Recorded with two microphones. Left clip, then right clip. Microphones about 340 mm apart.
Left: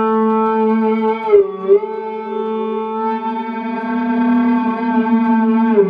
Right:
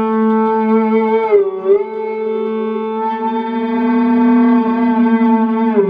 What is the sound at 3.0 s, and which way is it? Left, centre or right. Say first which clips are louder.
Music: right 3 dB; right.